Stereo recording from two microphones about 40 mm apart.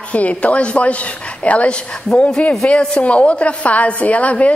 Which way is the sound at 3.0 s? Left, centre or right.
Left.